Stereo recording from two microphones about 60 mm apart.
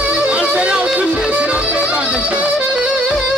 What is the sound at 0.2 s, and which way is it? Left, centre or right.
Music, right.